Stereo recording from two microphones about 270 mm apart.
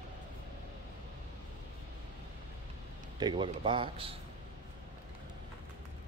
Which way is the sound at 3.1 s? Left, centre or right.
Centre.